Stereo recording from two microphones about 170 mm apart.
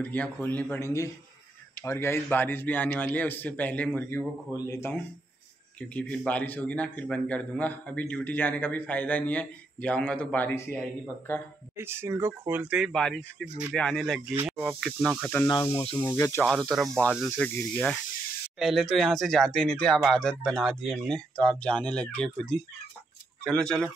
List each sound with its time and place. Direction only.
0.0 s a man's voice: 10° left (ahead or behind)
11.7 s speech: 15° right (ahead or behind); by 14.2 s centre (ahead or behind)
14.3 s speech: 10° right (ahead or behind)
14.8 s speech: centre (ahead or behind)
15.2 s a man's voice: 10° left (ahead or behind)
16.4 s speech: centre (ahead or behind)